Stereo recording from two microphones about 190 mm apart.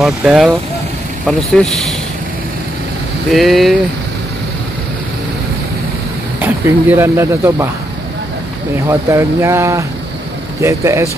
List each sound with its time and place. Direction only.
0.0 s speech: 5° right (ahead or behind)
3.3 s speech: centre (ahead or behind)
6.4 s speech: 10° right (ahead or behind)
8.7 s speech: 15° right (ahead or behind)